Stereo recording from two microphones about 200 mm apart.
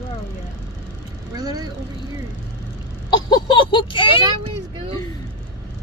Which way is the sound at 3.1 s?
20° left (ahead or behind).